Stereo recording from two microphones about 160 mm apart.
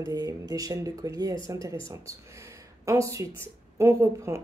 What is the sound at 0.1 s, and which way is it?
Speech, 25° right (ahead or behind).